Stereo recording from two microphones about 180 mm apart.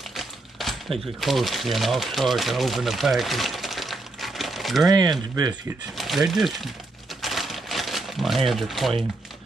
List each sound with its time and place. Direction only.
0.1 s speech: centre (ahead or behind)
4.8 s speech: 20° right (ahead or behind)
5.5 s speech: centre (ahead or behind)
7.2 s crumpling: centre (ahead or behind)
8.5 s speech: centre (ahead or behind)